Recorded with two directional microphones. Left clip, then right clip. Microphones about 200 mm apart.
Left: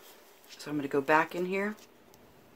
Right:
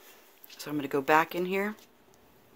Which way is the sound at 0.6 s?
30° right (ahead or behind).